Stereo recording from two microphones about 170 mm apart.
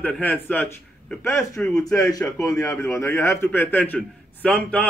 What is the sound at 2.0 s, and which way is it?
A man's voice, 20° left (ahead or behind).